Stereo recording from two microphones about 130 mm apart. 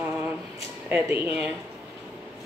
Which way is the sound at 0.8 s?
15° right (ahead or behind).